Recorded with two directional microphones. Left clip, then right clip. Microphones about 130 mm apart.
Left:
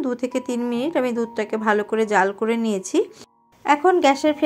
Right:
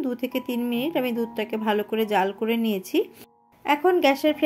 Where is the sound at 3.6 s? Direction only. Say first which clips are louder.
Left 4 dB; centre (ahead or behind).